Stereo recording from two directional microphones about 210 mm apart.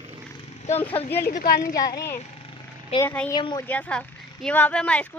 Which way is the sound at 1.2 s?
40° left (ahead or behind).